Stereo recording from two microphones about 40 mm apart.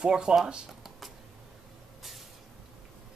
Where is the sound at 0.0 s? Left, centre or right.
Centre.